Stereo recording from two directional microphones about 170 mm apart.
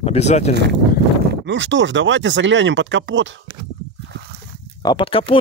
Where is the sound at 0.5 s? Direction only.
90° right.